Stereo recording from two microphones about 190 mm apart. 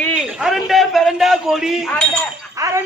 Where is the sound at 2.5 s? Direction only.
15° right (ahead or behind).